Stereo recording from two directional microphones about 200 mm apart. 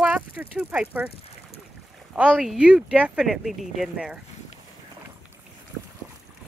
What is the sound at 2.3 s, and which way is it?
Speech, centre (ahead or behind).